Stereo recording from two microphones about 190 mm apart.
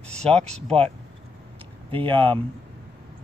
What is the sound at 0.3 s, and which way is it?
Speech, 30° right (ahead or behind).